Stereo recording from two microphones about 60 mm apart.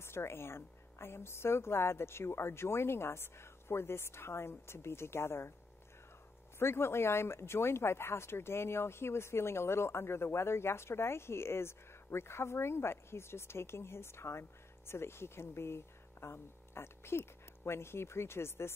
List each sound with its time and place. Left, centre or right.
0.0 s speech: left
6.6 s speech: left